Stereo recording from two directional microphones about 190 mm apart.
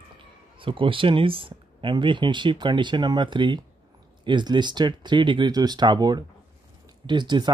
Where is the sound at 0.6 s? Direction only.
25° right (ahead or behind).